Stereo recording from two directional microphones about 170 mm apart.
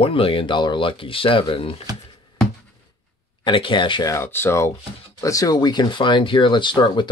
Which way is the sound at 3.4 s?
30° left (ahead or behind).